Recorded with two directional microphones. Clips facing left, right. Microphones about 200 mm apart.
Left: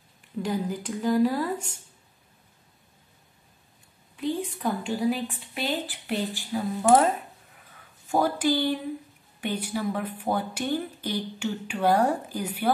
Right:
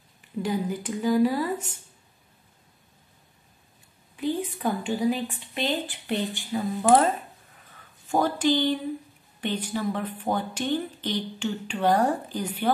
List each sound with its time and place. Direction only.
0.4 s a woman's voice: centre (ahead or behind)
4.2 s a woman's voice: centre (ahead or behind)
8.1 s speech: 10° left (ahead or behind)